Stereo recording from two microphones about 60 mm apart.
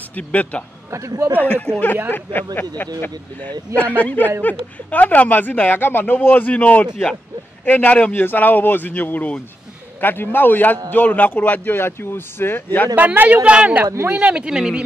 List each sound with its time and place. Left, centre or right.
0.1 s a woman's voice: left
0.9 s a man's voice: right
2.0 s a woman's voice: left
12.9 s speech: right; by 14.8 s centre